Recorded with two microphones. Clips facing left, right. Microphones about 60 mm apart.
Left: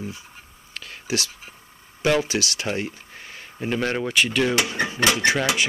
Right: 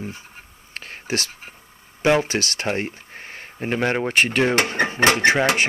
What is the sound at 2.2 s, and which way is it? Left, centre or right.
Speech, right.